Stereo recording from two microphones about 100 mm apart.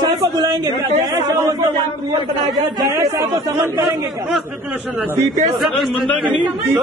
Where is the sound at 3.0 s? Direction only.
25° right (ahead or behind).